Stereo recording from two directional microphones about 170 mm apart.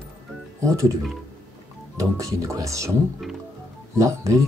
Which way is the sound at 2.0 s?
20° right (ahead or behind).